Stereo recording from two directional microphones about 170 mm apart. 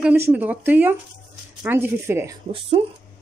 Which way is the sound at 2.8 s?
35° right (ahead or behind).